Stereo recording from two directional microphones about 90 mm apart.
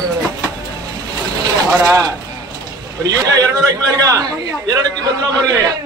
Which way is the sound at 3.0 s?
40° right (ahead or behind).